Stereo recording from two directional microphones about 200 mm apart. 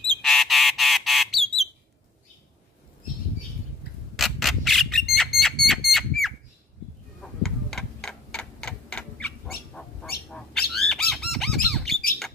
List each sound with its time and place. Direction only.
0.2 s frog: centre (ahead or behind)
3.8 s a sound: 50° left (ahead or behind)
4.2 s squawk: centre (ahead or behind)
5.1 s a sound: centre (ahead or behind)
7.2 s tick-tock: centre (ahead or behind)
9.8 s bird: 5° left (ahead or behind)